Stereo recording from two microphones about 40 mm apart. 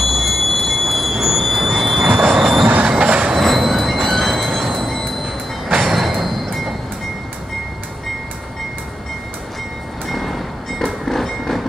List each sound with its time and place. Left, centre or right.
0.0 s train: centre
2.1 s train: centre
3.1 s train: right
3.3 s train: centre
5.7 s train: centre
10.0 s train: centre